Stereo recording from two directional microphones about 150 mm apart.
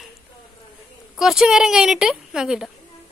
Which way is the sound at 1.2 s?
Centre (ahead or behind).